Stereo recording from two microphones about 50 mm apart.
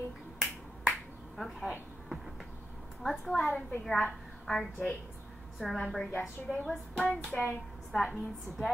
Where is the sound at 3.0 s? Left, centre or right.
Centre.